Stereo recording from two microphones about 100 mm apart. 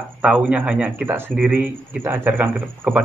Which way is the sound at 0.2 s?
10° right (ahead or behind).